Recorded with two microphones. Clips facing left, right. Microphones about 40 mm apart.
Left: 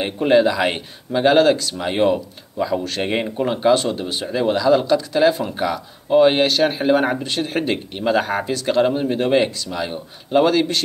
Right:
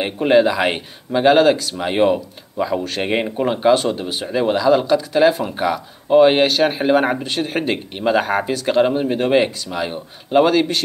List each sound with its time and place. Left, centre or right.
0.0 s speech: centre